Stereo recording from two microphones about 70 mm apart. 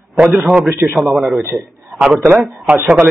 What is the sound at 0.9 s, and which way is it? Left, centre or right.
Speech, centre.